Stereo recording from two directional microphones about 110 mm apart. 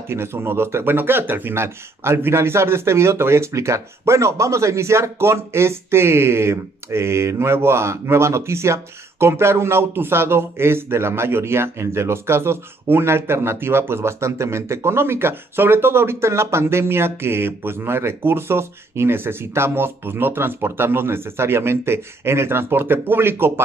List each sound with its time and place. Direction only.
0.1 s speech: 25° right (ahead or behind)